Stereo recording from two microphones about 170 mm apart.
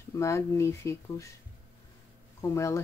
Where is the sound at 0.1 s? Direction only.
15° left (ahead or behind).